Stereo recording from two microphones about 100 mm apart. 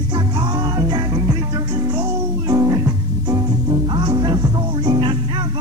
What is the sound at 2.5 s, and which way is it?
Music, 40° right (ahead or behind).